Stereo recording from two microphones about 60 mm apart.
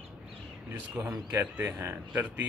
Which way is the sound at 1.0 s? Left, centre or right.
Right.